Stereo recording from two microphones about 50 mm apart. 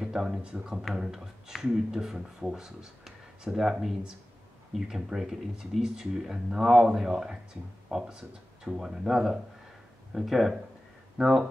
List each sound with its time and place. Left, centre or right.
0.0 s speech: centre
4.7 s speech: centre
11.1 s speech: centre